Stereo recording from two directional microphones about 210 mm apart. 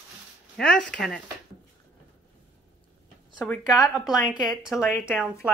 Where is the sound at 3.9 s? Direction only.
Centre (ahead or behind).